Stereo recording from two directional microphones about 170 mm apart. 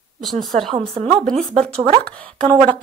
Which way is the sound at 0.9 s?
35° right (ahead or behind).